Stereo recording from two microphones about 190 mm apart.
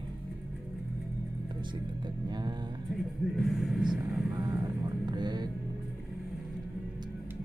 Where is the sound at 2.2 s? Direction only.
20° right (ahead or behind).